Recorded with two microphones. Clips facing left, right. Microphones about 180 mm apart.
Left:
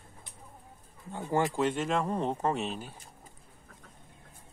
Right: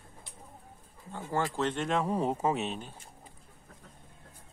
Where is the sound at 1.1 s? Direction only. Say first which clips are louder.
Left 3 dB; 20° left (ahead or behind).